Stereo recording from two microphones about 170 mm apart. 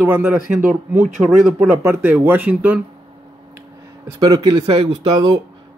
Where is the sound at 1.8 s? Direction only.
15° right (ahead or behind).